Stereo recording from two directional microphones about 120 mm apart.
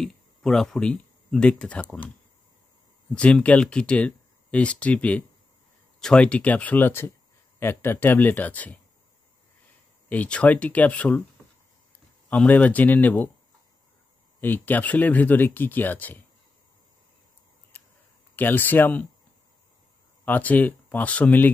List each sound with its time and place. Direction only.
0.0 s speech: 5° left (ahead or behind)
3.2 s speech: 10° left (ahead or behind)
10.0 s speech: 10° left (ahead or behind)
12.3 s speech: 10° left (ahead or behind)
14.4 s speech: 15° left (ahead or behind)
18.3 s speech: 15° left (ahead or behind)
20.2 s speech: 15° left (ahead or behind)